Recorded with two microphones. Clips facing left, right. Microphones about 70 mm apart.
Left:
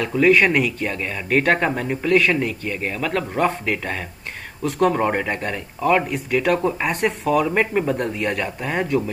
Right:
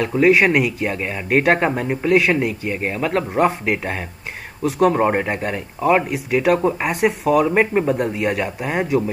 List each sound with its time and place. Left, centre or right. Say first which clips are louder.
0.1 s speech: right 1 dB; centre
4.6 s speech: right 3 dB; centre
5.0 s speech: right 3 dB; right
5.3 s speech: right 2 dB; centre
7.8 s speech: right 3 dB; centre